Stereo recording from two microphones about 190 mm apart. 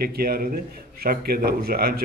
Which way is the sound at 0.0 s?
55° right (ahead or behind).